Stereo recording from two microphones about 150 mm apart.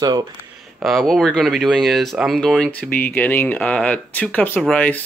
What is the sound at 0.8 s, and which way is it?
Speech, centre (ahead or behind).